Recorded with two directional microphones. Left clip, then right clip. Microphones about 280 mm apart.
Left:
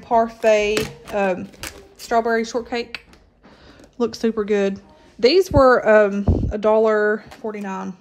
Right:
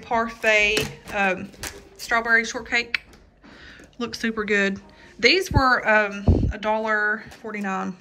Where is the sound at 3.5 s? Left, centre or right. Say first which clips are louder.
Even; centre.